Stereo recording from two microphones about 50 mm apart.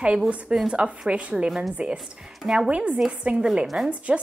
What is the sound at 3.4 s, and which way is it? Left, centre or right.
Speech, centre.